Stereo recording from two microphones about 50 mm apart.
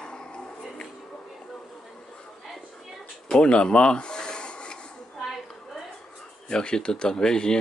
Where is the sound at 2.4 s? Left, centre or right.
Centre.